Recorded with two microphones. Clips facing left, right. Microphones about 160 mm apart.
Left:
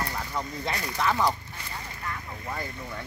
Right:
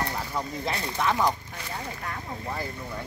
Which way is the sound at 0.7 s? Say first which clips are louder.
Even; 25° right (ahead or behind).